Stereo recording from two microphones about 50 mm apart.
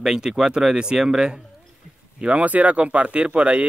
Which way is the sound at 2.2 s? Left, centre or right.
Right.